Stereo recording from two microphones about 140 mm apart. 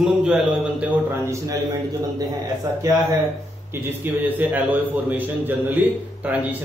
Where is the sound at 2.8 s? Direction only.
25° right (ahead or behind).